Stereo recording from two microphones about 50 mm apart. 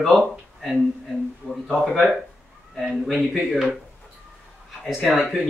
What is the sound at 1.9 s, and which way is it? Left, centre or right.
Speech, centre.